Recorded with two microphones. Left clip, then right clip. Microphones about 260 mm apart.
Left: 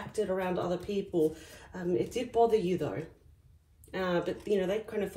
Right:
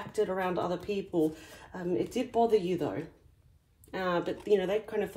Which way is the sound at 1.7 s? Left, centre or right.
Right.